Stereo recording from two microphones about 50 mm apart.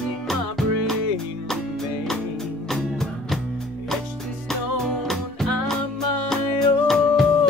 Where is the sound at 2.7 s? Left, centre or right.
Centre.